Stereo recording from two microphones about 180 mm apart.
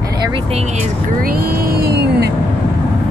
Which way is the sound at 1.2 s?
55° right (ahead or behind).